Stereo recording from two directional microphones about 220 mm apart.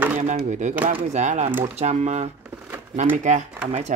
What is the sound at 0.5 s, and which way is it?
Speech, 35° right (ahead or behind).